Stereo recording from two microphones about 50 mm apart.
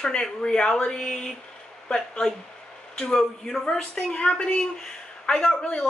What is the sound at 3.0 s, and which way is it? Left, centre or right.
Speech, centre.